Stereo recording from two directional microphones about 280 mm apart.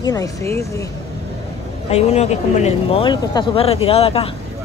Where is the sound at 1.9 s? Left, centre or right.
Left.